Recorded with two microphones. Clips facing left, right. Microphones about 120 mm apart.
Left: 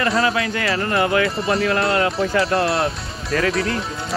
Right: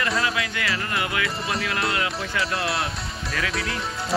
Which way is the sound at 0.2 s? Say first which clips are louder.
Left 6 dB; 35° left (ahead or behind).